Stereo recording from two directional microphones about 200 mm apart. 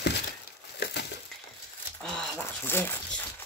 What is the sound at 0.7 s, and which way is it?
Crumpling, 55° left (ahead or behind).